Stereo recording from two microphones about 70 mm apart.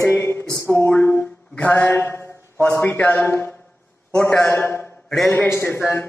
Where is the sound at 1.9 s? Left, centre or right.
Left.